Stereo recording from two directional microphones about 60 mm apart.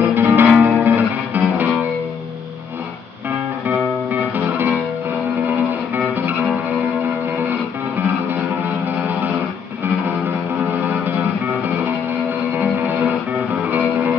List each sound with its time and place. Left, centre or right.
0.0 s music: right
0.5 s guitar: right
0.9 s music: right
4.1 s music: right
7.0 s music: right
8.4 s music: right
10.8 s music: right
12.5 s music: right
13.3 s music: centre